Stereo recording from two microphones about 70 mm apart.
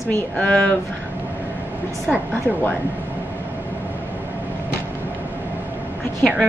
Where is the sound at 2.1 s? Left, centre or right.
Centre.